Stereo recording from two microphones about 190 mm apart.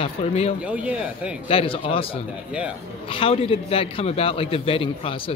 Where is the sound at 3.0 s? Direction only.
30° left (ahead or behind).